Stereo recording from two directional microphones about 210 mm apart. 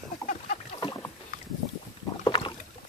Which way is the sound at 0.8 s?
15° left (ahead or behind).